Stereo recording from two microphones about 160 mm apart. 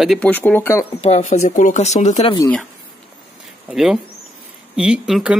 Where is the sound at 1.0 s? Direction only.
45° left (ahead or behind).